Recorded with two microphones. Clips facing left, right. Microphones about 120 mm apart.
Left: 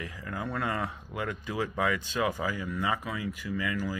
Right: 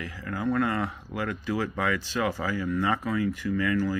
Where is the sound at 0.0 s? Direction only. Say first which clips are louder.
Right 5 dB; 20° left (ahead or behind).